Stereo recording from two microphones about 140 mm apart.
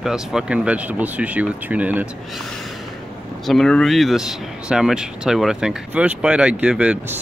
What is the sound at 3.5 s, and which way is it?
Speech, 5° left (ahead or behind).